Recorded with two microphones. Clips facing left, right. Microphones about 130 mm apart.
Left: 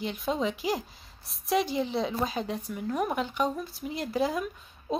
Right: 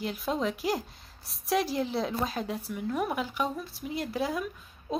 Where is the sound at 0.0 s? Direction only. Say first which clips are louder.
Left 1 dB; centre (ahead or behind).